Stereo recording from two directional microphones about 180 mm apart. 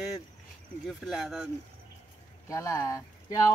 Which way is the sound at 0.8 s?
Centre (ahead or behind).